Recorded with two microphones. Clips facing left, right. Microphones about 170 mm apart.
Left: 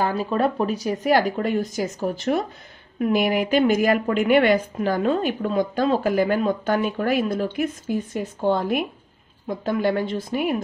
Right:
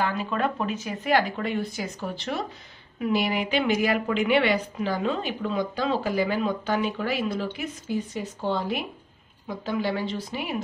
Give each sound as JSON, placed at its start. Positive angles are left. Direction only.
{"t": 0.0, "sound": "a woman's voice", "side_deg": 35}